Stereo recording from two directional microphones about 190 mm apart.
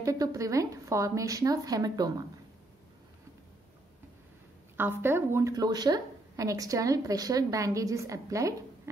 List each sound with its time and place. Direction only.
0.0 s a woman's voice: 15° right (ahead or behind)
5.0 s a woman's voice: 15° right (ahead or behind)